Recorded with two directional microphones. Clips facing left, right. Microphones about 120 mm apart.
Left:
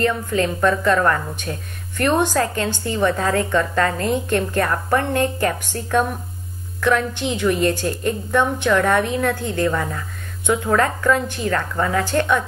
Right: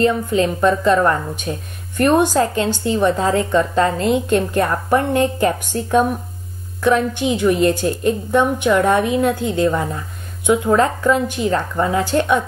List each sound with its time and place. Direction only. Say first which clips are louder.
0.0 s a woman's voice: right 4 dB; 20° right (ahead or behind)